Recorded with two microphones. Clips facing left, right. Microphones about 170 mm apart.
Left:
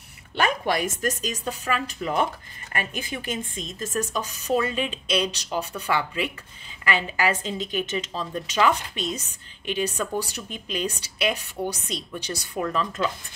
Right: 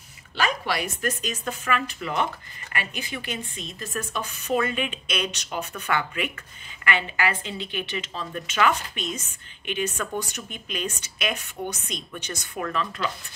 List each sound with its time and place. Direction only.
0.4 s a woman's voice: 50° left (ahead or behind); by 2.1 s 35° left (ahead or behind)
2.7 s a woman's voice: 45° left (ahead or behind)
8.4 s a woman's voice: 30° left (ahead or behind)